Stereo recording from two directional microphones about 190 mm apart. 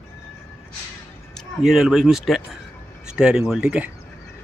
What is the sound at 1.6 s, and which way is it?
Speech, centre (ahead or behind).